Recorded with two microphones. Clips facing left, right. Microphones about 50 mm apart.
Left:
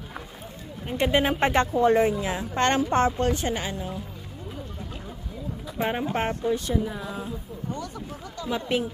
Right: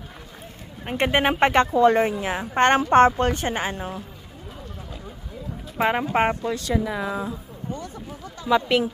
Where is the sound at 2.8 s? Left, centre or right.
Right.